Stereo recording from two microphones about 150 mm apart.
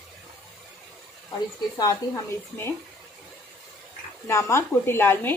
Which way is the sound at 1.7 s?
25° left (ahead or behind).